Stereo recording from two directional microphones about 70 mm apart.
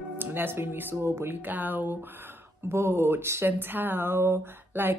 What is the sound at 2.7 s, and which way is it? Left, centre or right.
Speech, right.